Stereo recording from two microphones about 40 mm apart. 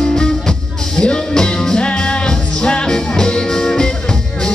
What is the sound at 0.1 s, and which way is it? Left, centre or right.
Music, centre.